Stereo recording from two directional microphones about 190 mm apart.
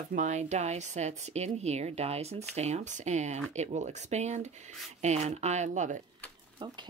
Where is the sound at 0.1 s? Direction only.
40° right (ahead or behind).